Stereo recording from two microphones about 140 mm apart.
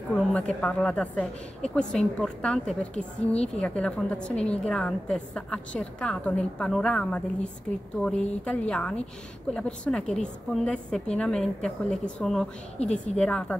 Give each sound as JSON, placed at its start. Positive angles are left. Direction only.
{"t": 0.1, "sound": "a woman's voice", "side_deg": 10}
{"t": 12.7, "sound": "a woman's voice", "side_deg": 50}
{"t": 13.1, "sound": "a woman's voice", "side_deg": 5}